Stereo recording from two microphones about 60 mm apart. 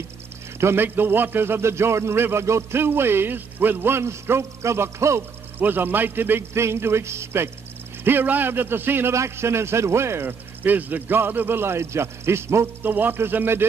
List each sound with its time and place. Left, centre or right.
0.6 s speech: right
0.8 s a man's voice: right
5.6 s speech: right
6.5 s a man's voice: right
8.0 s speech: right
9.1 s a man's voice: right
10.6 s speech: right
12.8 s speech: right